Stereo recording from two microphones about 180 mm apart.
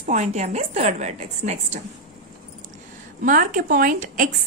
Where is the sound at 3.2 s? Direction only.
50° right (ahead or behind).